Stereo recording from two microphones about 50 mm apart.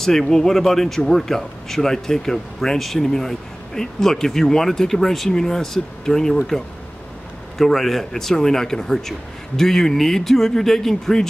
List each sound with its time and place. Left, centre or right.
0.0 s speech: centre